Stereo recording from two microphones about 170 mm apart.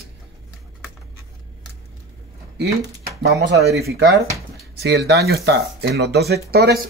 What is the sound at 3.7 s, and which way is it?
Speech, 70° right (ahead or behind).